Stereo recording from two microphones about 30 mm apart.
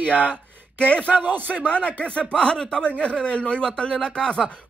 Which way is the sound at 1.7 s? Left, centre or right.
Left.